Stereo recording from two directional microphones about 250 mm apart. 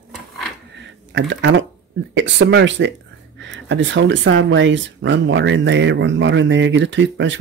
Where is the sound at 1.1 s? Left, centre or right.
Right.